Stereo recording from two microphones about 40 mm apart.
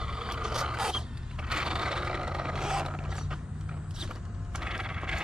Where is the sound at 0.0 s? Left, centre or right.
Centre.